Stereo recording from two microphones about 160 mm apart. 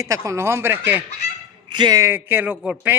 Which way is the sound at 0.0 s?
20° right (ahead or behind).